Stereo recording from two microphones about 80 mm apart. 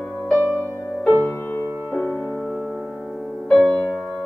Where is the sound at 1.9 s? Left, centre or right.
Centre.